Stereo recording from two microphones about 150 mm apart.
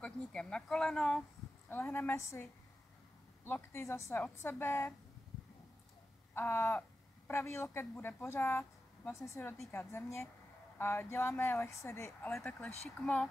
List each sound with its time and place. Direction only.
0.0 s a woman's voice: 5° left (ahead or behind)
3.4 s a woman's voice: 15° left (ahead or behind)
6.3 s a woman's voice: 15° left (ahead or behind)